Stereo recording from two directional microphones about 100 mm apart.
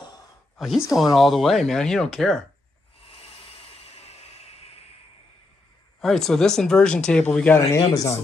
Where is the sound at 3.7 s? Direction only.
90° left.